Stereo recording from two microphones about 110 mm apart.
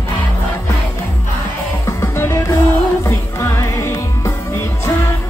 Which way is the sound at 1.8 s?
25° left (ahead or behind).